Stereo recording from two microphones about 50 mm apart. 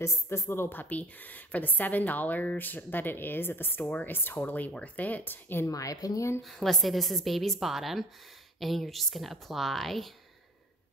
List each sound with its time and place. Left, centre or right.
0.0 s speech: left
0.7 s a woman's voice: left
4.4 s a woman's voice: left
5.8 s speech: left
6.4 s a woman's voice: centre